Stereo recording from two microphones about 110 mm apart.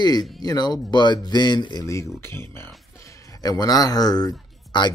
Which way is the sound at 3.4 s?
35° left (ahead or behind).